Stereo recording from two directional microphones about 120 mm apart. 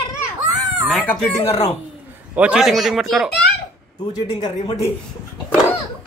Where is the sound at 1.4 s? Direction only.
60° left (ahead or behind).